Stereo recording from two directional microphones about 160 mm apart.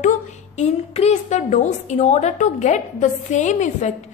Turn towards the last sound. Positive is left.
turn(degrees=50)  # may be behind; listen again after turning